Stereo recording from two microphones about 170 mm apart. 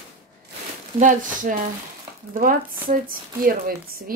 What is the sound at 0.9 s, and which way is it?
Speech, 50° right (ahead or behind).